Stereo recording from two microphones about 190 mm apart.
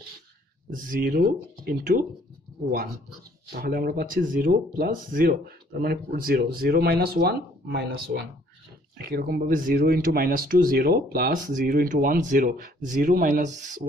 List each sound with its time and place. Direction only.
0.7 s speech: 45° right (ahead or behind)
3.5 s speech: 50° right (ahead or behind)